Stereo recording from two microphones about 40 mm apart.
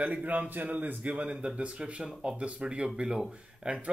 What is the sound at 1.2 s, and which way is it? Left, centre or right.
Speech, right.